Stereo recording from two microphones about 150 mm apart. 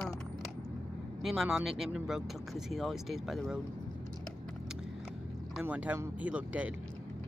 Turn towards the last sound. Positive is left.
turn(degrees=-10)  # may be behind; listen again after turning